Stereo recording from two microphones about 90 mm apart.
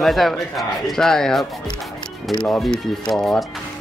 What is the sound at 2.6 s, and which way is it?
Speech, 5° left (ahead or behind).